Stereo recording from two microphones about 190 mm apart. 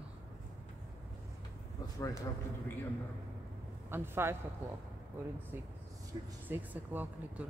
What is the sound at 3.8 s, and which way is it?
Speech, 10° right (ahead or behind).